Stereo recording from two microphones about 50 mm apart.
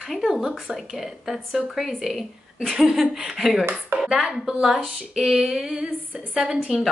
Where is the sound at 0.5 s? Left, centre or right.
Centre.